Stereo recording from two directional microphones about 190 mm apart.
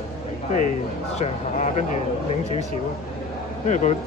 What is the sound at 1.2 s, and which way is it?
Speech, 40° left (ahead or behind).